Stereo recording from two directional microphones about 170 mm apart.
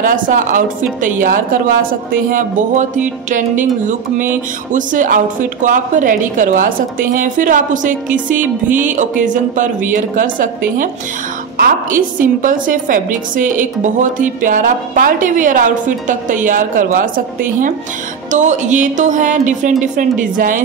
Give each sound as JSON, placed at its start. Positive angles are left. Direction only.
{"t": 0.3, "sound": "a woman's voice", "side_deg": -50}
{"t": 4.7, "sound": "a woman's voice", "side_deg": -50}